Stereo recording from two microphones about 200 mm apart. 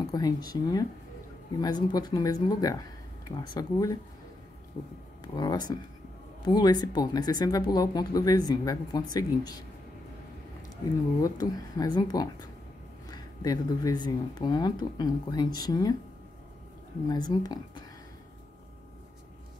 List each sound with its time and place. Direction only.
0.0 s speech: 20° left (ahead or behind)
5.3 s speech: 20° left (ahead or behind)
11.1 s speech: 20° left (ahead or behind)
17.1 s speech: 20° left (ahead or behind)